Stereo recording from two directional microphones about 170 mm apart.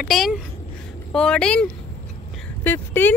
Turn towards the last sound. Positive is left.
turn(degrees=10)  # may be behind; listen again after turning